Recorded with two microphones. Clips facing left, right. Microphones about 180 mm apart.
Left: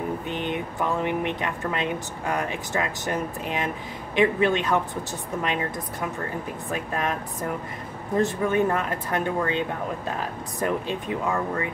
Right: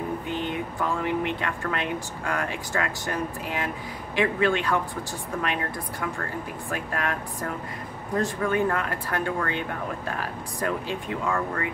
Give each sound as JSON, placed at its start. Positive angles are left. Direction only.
{"t": 0.3, "sound": "speech", "side_deg": 20}
{"t": 8.2, "sound": "speech", "side_deg": 20}